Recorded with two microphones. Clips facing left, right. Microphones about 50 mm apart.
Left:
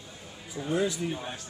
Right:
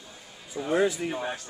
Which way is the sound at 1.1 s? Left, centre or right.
Right.